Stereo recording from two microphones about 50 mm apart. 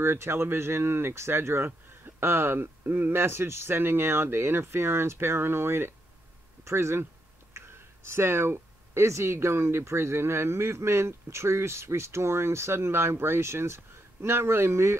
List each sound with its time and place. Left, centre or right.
0.0 s speech: right
6.6 s speech: right